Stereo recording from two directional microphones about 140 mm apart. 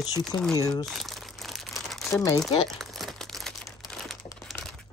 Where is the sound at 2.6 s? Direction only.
Centre (ahead or behind).